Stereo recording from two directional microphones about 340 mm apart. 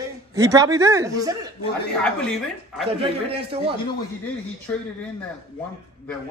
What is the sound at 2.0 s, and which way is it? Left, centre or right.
Speech, centre.